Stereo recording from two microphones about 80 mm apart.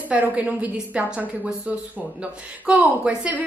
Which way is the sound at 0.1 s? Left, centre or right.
Centre.